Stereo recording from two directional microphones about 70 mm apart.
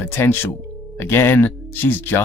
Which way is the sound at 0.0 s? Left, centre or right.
Left.